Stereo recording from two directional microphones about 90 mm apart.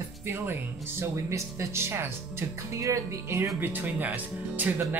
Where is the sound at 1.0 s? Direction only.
35° right (ahead or behind).